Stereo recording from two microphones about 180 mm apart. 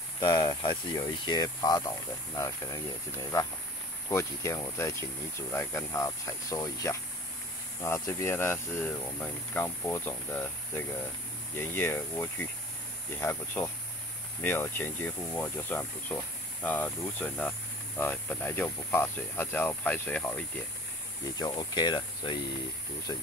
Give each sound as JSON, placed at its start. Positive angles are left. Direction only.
{"t": 0.2, "sound": "speech", "side_deg": 25}
{"t": 21.4, "sound": "speech", "side_deg": 25}